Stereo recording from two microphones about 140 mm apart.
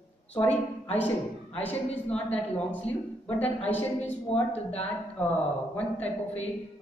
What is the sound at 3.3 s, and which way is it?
A woman's voice, 10° left (ahead or behind).